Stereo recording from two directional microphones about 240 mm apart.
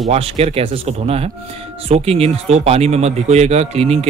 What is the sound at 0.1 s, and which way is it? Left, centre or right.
Speech, right.